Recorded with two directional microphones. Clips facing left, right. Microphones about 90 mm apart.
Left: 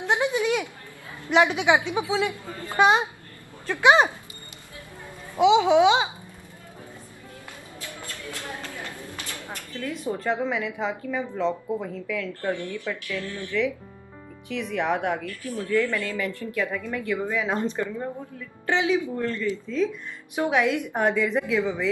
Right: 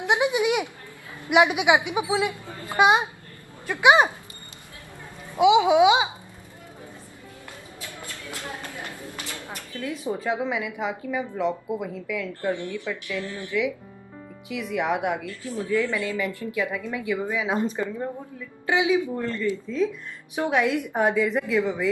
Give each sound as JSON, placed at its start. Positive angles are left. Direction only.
{"t": 0.0, "sound": "sheep", "side_deg": -15}
{"t": 1.1, "sound": "speech", "side_deg": -15}
{"t": 5.4, "sound": "speech", "side_deg": -15}
{"t": 8.1, "sound": "a sound", "side_deg": -20}
{"t": 9.3, "sound": "speech", "side_deg": -15}
{"t": 12.3, "sound": "a woman's voice", "side_deg": -20}
{"t": 14.5, "sound": "speech", "side_deg": -5}
{"t": 15.2, "sound": "a woman's voice", "side_deg": -20}